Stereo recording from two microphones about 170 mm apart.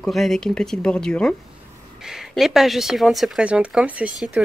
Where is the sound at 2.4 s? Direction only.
Centre (ahead or behind).